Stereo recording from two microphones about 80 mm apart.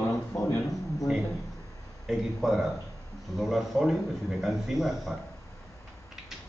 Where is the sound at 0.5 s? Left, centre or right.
Left.